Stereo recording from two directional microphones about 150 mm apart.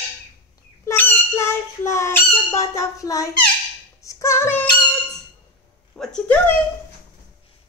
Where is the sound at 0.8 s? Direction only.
15° left (ahead or behind).